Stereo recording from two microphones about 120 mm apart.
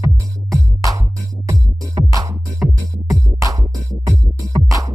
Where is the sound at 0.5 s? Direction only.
25° right (ahead or behind).